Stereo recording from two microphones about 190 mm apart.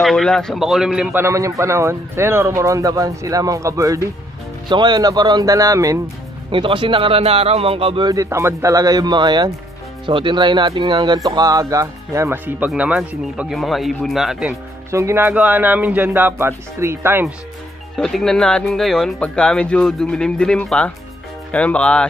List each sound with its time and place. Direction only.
0.0 s a man's voice: centre (ahead or behind)
14.9 s a man's voice: 15° right (ahead or behind)
17.9 s speech: centre (ahead or behind)